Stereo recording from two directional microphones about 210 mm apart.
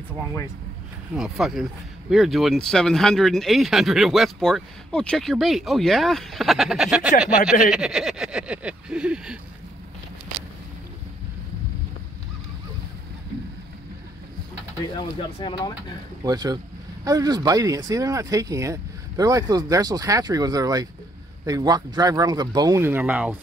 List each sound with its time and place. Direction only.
1.1 s speech: centre (ahead or behind)
15.0 s speech: 20° left (ahead or behind)
16.3 s speech: 20° right (ahead or behind)